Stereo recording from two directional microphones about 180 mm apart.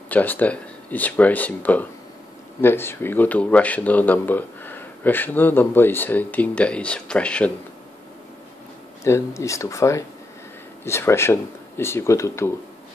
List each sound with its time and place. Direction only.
0.1 s speech: 10° left (ahead or behind)
9.0 s speech: 15° left (ahead or behind)